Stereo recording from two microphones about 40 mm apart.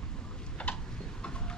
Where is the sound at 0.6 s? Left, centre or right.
Left.